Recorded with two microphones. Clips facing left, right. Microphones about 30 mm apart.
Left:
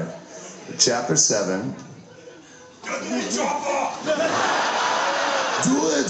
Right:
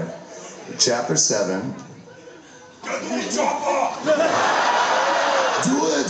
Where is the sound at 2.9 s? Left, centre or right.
Centre.